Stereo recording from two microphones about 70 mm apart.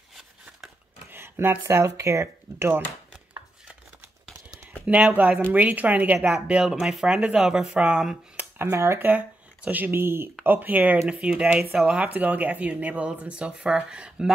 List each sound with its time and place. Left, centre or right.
1.1 s a sound: right
1.6 s speech: right
5.1 s speech: right
8.6 s speech: right
9.0 s speech: right